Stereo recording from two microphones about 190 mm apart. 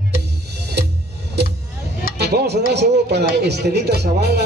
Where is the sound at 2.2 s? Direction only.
60° right (ahead or behind).